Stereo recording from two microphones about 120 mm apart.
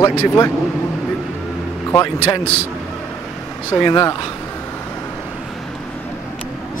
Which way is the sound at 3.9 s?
30° left (ahead or behind).